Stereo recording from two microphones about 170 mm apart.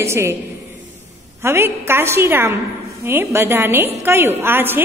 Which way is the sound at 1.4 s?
15° right (ahead or behind).